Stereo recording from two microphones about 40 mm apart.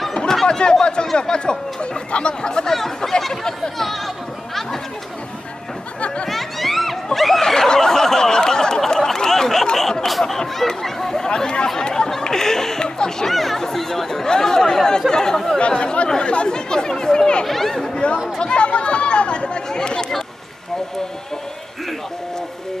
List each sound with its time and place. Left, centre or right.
0.3 s speech: centre
2.7 s a sound: centre
3.7 s speech: centre
5.9 s a sound: left
6.2 s a sound: centre
7.2 s snicker: centre
7.4 s snicker: centre
10.2 s chatter: centre
11.2 s speech: left
13.3 s speech: centre
15.6 s speech: left
17.5 s speech: centre
18.4 s speech: left